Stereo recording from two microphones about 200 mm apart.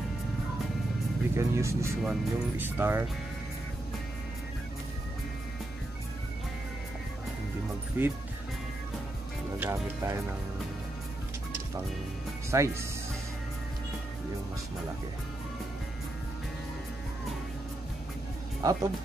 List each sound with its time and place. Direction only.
1.3 s speech: 15° right (ahead or behind)
8.0 s speech: 10° right (ahead or behind)
9.6 s speech: 15° right (ahead or behind)
12.4 s speech: 15° right (ahead or behind)
18.6 s speech: 15° right (ahead or behind)